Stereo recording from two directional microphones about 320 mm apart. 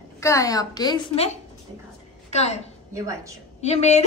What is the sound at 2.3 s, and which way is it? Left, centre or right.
Speech, centre.